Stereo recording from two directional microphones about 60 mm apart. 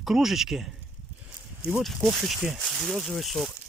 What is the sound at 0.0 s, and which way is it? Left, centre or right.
Speech, centre.